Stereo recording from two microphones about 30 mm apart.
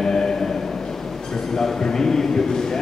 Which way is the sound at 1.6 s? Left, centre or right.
Centre.